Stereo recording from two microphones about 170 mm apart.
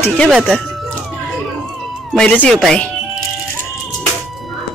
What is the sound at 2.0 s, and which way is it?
Speech, 5° left (ahead or behind).